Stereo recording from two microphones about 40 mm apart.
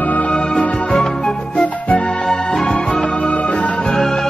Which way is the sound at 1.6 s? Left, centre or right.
Left.